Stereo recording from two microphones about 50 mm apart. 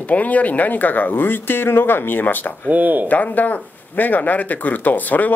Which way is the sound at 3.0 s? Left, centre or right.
Left.